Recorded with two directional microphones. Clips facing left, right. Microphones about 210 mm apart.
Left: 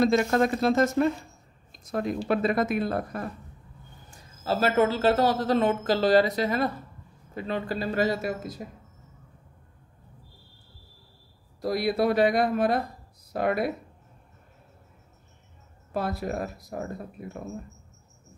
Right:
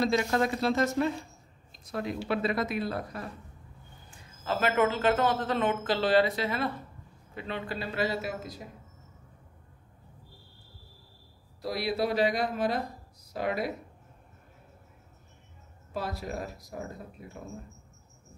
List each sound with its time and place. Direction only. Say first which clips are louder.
0.0 s speech: left 5 dB; 50° left (ahead or behind)
4.1 s a man's voice: left 4 dB; 35° left (ahead or behind)
11.6 s speech: left 5 dB; 50° left (ahead or behind)
15.9 s speech: left 5 dB; 55° left (ahead or behind)